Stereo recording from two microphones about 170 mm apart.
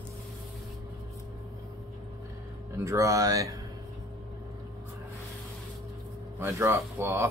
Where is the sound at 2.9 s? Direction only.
20° right (ahead or behind).